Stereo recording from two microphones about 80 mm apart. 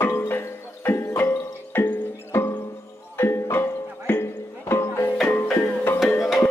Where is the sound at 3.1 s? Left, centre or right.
Left.